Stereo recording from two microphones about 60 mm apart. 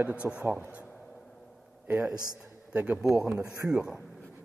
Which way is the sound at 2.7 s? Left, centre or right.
Right.